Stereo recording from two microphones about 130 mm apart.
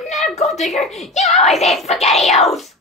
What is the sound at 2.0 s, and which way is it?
Speech, 55° left (ahead or behind).